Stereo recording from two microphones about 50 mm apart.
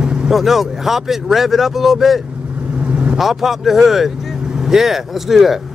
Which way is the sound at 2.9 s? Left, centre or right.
Right.